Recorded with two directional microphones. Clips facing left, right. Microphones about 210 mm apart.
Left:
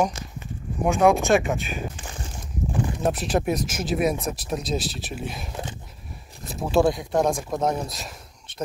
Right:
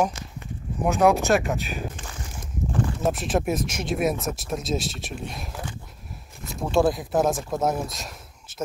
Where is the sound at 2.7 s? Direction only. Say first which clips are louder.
Right 1 dB; 15° left (ahead or behind).